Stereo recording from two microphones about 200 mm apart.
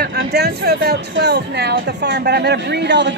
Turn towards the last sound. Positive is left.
turn(degrees=-60)  # may be behind; listen again after turning